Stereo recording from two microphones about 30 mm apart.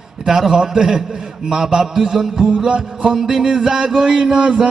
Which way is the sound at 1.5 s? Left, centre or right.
Right.